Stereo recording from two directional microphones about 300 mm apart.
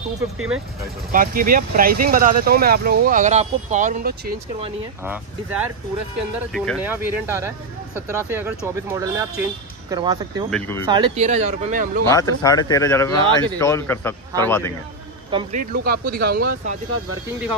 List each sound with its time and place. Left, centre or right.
1.1 s speech: right
5.0 s speech: centre
10.5 s speech: centre
10.9 s speech: centre
12.1 s speech: centre
15.3 s speech: right